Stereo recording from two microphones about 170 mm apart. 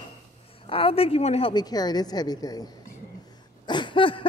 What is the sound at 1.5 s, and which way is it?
A woman's voice, 25° left (ahead or behind).